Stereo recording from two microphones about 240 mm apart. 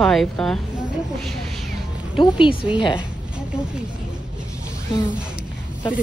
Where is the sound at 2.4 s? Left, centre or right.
Centre.